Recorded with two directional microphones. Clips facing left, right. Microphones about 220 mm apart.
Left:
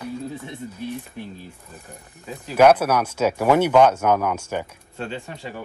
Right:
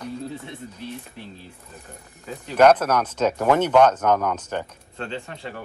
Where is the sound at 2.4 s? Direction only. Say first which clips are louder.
Left 1 dB; 10° left (ahead or behind).